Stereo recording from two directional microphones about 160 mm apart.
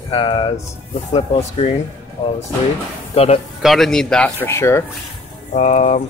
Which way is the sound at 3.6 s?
Centre (ahead or behind).